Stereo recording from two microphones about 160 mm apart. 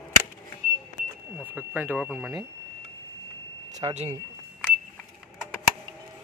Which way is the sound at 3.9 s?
45° right (ahead or behind).